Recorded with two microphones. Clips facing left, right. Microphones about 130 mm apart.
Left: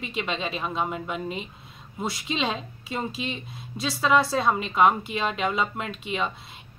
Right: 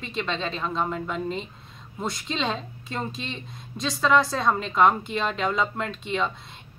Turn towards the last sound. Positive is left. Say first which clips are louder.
# right 2 dB
turn(degrees=5)  # may be behind; listen again after turning